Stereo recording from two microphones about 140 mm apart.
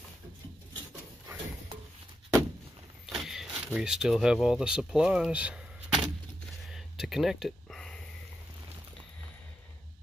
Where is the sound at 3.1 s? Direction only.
Centre (ahead or behind).